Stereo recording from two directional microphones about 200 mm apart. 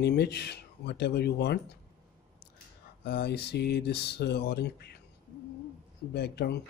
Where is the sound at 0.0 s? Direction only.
55° left (ahead or behind).